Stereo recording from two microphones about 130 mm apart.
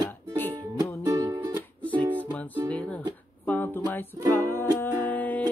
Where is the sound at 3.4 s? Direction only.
15° left (ahead or behind).